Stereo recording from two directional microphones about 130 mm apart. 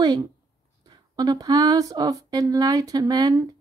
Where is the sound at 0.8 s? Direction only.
30° right (ahead or behind).